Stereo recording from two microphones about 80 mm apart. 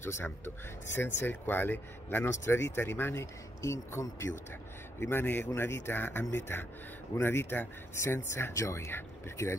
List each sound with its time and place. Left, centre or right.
0.0 s speech: left